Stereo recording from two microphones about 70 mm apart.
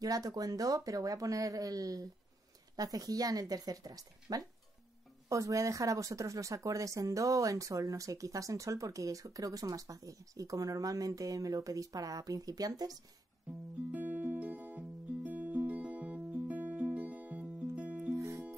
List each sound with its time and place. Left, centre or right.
0.0 s speech: right
5.3 s speech: right
13.9 s music: right
18.1 s music: right